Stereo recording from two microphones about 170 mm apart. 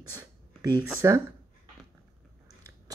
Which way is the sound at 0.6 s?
25° right (ahead or behind).